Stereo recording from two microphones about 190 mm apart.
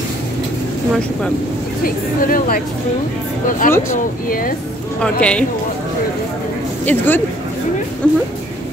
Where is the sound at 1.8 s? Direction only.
50° left (ahead or behind).